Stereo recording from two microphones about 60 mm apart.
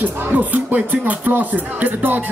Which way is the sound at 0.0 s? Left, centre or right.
Right.